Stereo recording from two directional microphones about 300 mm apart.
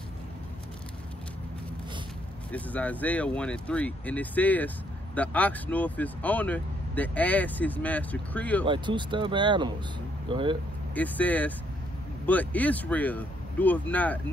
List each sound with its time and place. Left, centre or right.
2.5 s speech: centre
8.6 s speech: centre
11.0 s speech: centre